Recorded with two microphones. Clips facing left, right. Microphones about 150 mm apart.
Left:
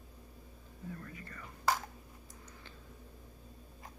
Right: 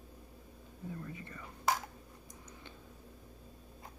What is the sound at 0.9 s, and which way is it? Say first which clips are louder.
Whispering: right 3 dB; 20° right (ahead or behind).